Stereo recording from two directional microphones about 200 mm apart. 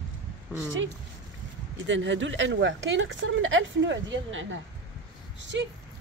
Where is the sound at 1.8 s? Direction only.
65° right (ahead or behind).